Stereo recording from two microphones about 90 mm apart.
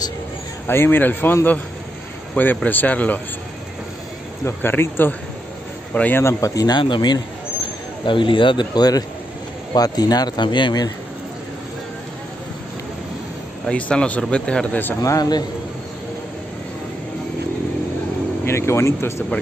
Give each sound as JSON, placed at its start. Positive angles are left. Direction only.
{"t": 0.7, "sound": "a man's voice", "side_deg": 25}
{"t": 4.5, "sound": "a man's voice", "side_deg": 25}
{"t": 6.2, "sound": "speech", "side_deg": 40}
{"t": 6.8, "sound": "a man's voice", "side_deg": 60}
{"t": 13.7, "sound": "speech", "side_deg": 10}
{"t": 15.0, "sound": "speech", "side_deg": 40}
{"t": 18.4, "sound": "a man's voice", "side_deg": 30}